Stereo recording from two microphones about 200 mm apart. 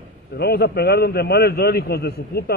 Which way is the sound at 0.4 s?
55° left (ahead or behind).